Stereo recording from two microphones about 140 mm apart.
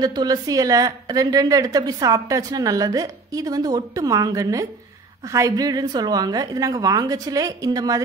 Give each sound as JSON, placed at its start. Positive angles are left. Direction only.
{"t": 0.0, "sound": "a woman's voice", "side_deg": -30}